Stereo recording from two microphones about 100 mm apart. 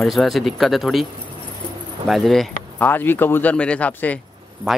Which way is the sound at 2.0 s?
Centre (ahead or behind).